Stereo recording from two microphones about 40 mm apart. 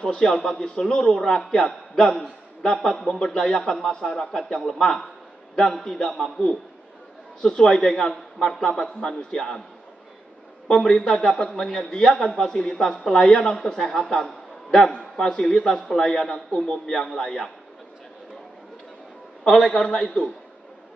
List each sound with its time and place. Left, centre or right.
0.0 s a man's voice: centre
1.0 s a man's voice: centre
10.7 s a man's voice: centre
11.2 s a man's voice: left
11.6 s a man's voice: centre
19.4 s a man's voice: centre